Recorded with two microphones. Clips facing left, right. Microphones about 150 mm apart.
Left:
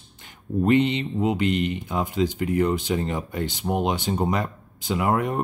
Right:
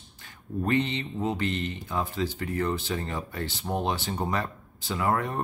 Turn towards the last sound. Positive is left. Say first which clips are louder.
# left 4 dB
turn(degrees=15)  # may be behind; listen again after turning